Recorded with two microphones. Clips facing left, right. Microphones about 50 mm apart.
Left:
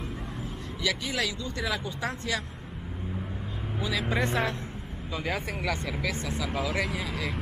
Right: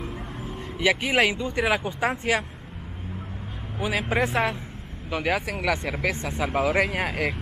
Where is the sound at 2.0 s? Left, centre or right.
Centre.